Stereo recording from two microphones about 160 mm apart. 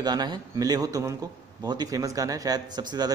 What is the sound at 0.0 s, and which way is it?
Speech, 25° right (ahead or behind).